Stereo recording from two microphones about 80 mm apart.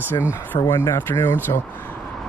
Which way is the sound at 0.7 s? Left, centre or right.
Left.